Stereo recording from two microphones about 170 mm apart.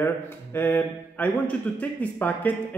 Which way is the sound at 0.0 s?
15° left (ahead or behind).